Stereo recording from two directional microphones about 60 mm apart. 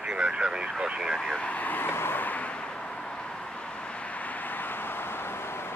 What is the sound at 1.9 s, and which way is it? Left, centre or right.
Vehicle, left.